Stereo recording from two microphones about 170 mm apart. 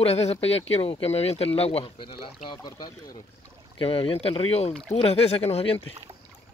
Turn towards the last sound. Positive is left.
turn(degrees=35)  # may be behind; listen again after turning